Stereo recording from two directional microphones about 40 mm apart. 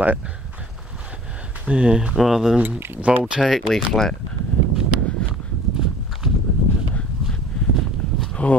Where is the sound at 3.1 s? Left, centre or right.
Right.